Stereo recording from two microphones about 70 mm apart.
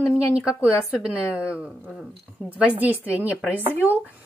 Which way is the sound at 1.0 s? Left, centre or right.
Centre.